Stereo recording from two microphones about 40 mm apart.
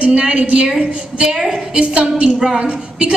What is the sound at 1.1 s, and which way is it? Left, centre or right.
A woman's voice, centre.